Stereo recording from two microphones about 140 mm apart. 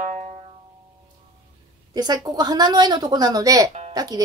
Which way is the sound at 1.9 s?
30° right (ahead or behind).